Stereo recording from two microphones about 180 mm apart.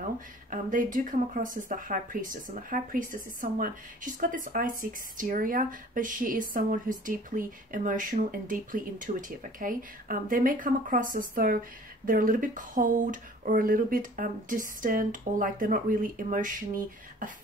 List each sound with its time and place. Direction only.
0.5 s speech: 45° right (ahead or behind)